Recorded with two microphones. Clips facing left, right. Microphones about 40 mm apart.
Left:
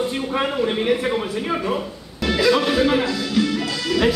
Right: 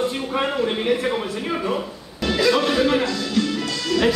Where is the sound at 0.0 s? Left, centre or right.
Centre.